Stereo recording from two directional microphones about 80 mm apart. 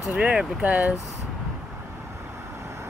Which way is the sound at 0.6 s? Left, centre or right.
Right.